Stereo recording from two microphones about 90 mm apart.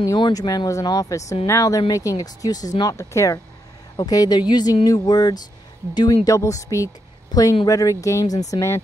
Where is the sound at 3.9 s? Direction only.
45° left (ahead or behind).